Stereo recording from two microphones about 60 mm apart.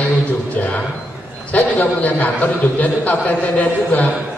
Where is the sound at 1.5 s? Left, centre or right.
Left.